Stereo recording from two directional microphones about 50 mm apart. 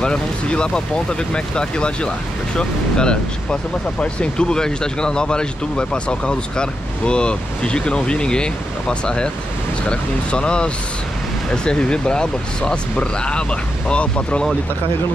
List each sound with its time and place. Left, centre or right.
0.0 s speech: centre